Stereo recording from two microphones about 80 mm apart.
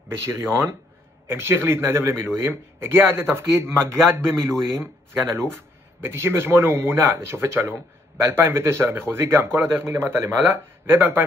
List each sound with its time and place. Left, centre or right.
0.3 s a man's voice: right